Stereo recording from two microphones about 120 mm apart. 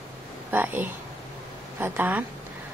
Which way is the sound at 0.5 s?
15° right (ahead or behind).